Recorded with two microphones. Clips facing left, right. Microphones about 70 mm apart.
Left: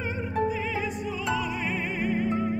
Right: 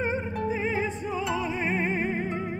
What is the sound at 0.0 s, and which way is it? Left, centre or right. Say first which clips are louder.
Music: even; right.